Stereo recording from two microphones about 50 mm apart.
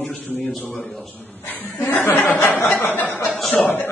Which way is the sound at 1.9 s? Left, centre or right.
Left.